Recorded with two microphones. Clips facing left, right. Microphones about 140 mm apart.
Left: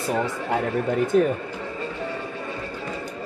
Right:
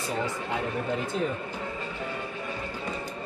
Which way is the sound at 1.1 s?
55° left (ahead or behind).